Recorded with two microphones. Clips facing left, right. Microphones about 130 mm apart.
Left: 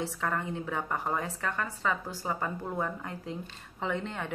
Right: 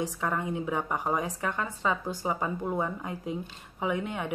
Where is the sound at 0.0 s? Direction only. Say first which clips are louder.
Right 2 dB; 15° right (ahead or behind).